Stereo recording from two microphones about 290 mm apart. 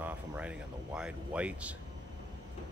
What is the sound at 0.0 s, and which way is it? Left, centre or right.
Speech, centre.